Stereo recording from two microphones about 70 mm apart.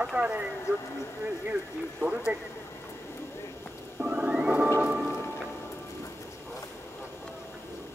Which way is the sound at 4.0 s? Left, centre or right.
Centre.